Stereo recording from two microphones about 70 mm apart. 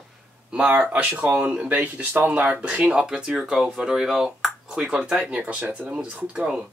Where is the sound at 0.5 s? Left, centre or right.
Centre.